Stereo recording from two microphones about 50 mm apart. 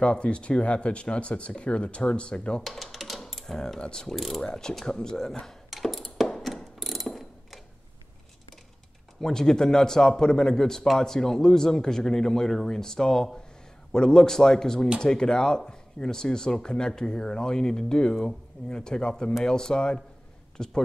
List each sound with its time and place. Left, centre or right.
0.0 s speech: left
2.6 s speech: centre
4.1 s mechanisms: centre
4.4 s speech: centre
5.7 s a sound: centre
6.3 s mechanisms: centre
9.2 s a man's voice: centre